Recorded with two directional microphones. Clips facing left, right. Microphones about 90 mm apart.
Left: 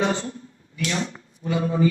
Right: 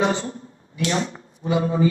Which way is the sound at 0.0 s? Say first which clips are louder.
Right 2 dB; 35° right (ahead or behind).